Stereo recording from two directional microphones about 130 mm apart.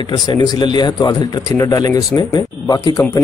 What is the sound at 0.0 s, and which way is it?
A man's voice, 35° left (ahead or behind).